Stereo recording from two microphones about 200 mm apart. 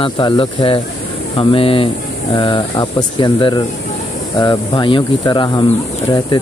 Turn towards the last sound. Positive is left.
turn(degrees=25)  # may be behind; listen again after turning